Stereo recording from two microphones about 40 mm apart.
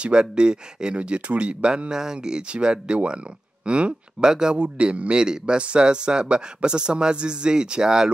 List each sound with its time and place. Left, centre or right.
0.0 s speech: right
4.6 s speech: right